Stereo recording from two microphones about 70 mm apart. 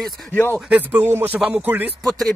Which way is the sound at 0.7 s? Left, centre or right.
Right.